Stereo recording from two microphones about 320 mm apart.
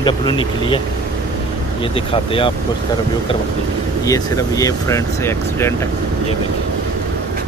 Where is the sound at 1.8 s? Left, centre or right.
Centre.